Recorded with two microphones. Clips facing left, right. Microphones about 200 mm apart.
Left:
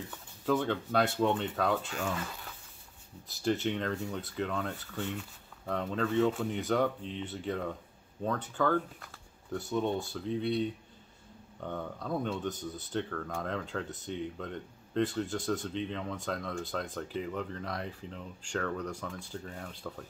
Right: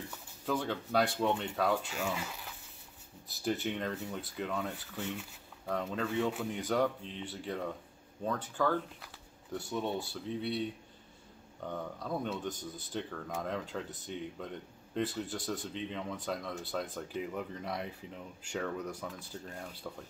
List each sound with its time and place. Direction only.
0.1 s speech: centre (ahead or behind)
11.6 s speech: 5° right (ahead or behind)